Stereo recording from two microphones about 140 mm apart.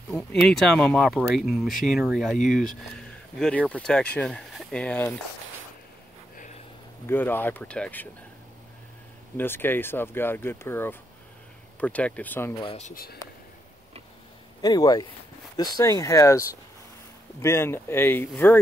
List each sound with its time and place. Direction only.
0.1 s speech: 5° left (ahead or behind)
7.1 s speech: 15° left (ahead or behind)
9.4 s speech: 15° left (ahead or behind)
12.6 s speech: 50° left (ahead or behind)
12.9 s speech: 90° left
14.6 s speech: 30° left (ahead or behind)